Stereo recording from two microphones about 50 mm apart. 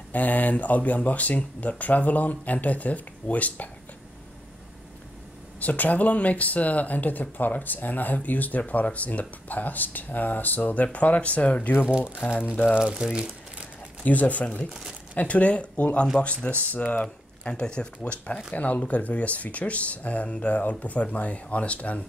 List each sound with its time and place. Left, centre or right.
0.1 s speech: left
5.6 s speech: left
12.0 s speech: left
12.6 s speech: centre
14.0 s speech: left
14.7 s speech: centre
15.1 s speech: left